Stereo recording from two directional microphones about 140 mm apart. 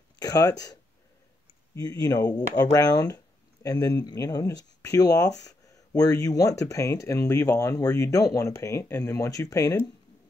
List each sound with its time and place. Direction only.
0.2 s speech: 25° left (ahead or behind)
1.8 s speech: 25° left (ahead or behind)